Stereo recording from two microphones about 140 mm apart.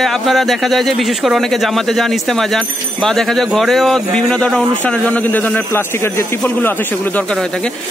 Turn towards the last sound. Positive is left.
turn(degrees=5)  # may be behind; listen again after turning